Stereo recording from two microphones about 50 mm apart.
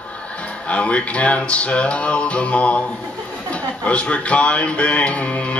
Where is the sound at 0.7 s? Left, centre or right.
Left.